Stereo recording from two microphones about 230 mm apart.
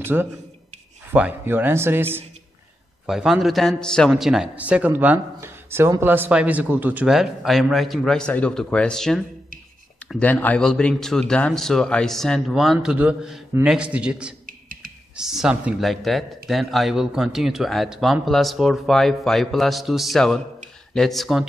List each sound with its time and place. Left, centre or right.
0.0 s a man's voice: centre
14.4 s beatboxing: right
15.1 s a man's voice: centre